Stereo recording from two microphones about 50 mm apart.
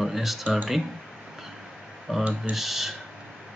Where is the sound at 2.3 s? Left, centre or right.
Centre.